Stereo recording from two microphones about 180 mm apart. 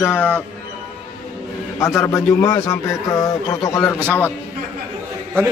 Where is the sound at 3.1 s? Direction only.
20° left (ahead or behind).